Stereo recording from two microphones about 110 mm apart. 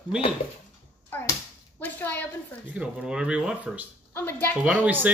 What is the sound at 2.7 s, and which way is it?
Speech, 10° right (ahead or behind).